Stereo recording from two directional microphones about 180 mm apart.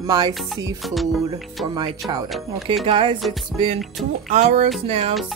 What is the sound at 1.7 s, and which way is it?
Speech, 20° right (ahead or behind).